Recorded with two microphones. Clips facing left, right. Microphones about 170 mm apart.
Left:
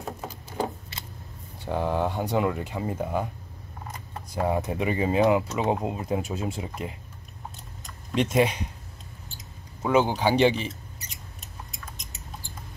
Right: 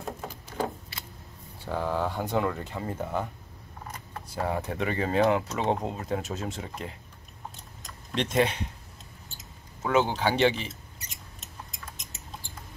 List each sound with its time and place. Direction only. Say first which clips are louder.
1.7 s speech: left 3 dB; 20° left (ahead or behind)
4.4 s speech: left 4 dB; 15° left (ahead or behind)
8.1 s speech: left 3 dB; 10° left (ahead or behind)
9.8 s speech: left 3 dB; 15° left (ahead or behind)